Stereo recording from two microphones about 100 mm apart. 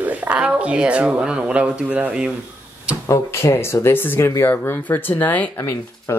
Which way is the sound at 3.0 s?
30° left (ahead or behind).